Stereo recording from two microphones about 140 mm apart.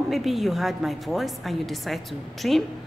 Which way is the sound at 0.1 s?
Centre (ahead or behind).